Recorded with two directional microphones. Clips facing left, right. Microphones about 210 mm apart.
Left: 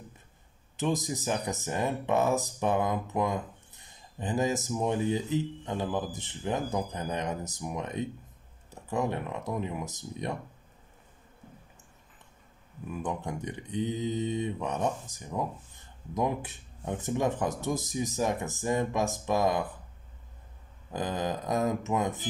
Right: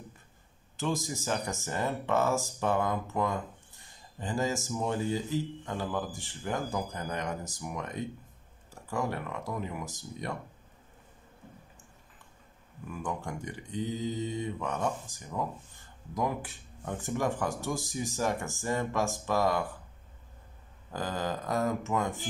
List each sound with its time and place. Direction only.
0.7 s speech: 20° left (ahead or behind)
12.9 s speech: 20° left (ahead or behind)
20.9 s speech: 20° left (ahead or behind)